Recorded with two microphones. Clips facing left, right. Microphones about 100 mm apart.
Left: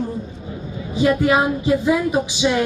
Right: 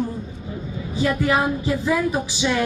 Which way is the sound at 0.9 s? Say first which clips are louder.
Left 4 dB; 20° left (ahead or behind).